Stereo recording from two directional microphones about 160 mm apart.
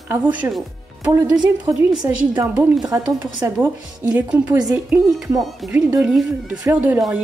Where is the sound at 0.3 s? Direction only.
10° right (ahead or behind).